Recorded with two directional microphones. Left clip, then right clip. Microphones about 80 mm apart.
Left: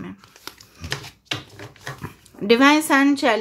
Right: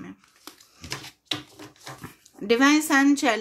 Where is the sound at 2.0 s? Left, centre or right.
Left.